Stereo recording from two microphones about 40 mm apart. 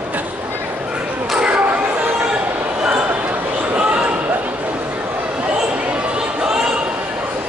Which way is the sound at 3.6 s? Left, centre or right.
Right.